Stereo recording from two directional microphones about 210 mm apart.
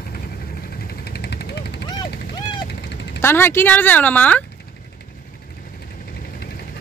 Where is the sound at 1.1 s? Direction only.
50° left (ahead or behind).